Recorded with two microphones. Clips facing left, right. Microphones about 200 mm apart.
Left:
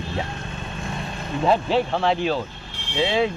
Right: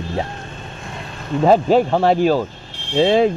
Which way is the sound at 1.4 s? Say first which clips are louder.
Right 7 dB; 45° right (ahead or behind).